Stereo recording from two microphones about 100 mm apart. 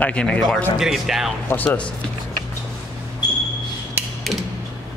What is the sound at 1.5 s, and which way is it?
Speech, 20° left (ahead or behind).